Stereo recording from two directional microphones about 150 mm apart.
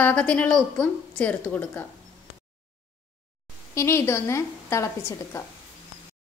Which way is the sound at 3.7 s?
15° left (ahead or behind).